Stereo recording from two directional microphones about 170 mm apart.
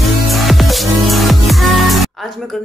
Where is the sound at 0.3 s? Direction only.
Centre (ahead or behind).